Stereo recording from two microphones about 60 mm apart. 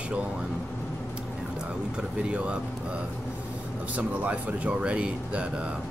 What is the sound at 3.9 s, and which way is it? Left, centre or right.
Speech, right.